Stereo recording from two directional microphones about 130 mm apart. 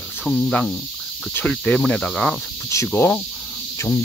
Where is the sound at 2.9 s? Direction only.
20° left (ahead or behind).